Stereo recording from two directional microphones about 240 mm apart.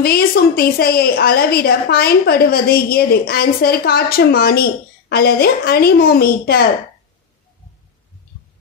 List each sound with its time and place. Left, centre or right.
0.0 s a woman's voice: left